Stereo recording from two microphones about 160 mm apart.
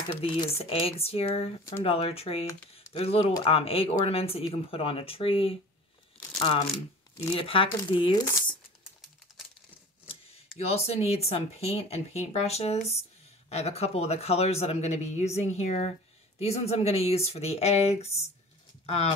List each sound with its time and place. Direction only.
0.2 s speech: 35° left (ahead or behind)
10.6 s speech: 40° left (ahead or behind)